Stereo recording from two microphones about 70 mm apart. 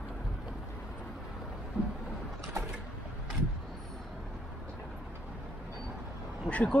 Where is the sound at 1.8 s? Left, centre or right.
Centre.